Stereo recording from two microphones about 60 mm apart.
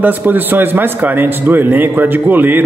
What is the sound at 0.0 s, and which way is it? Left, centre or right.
A man's voice, right.